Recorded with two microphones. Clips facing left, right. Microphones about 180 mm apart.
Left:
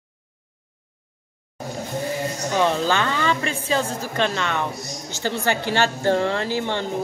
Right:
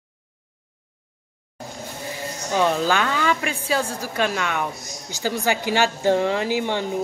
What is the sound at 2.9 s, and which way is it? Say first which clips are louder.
Speech: even; 5° right (ahead or behind).